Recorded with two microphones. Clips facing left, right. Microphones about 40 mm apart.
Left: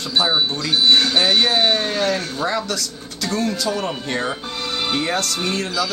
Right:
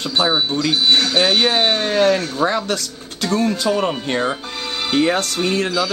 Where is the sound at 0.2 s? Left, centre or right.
Centre.